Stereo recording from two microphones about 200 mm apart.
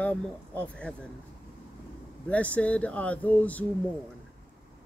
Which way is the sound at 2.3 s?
5° left (ahead or behind).